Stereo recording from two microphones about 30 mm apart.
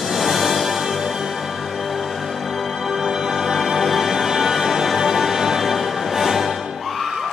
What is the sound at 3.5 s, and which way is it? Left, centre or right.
Music, centre.